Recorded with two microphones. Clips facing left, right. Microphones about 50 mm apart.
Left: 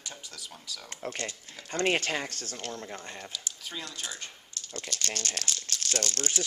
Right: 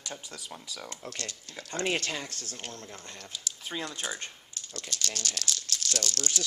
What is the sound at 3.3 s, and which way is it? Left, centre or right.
Speech, right.